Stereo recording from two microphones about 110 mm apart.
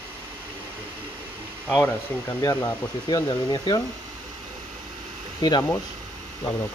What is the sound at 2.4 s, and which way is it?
Speech, 30° left (ahead or behind).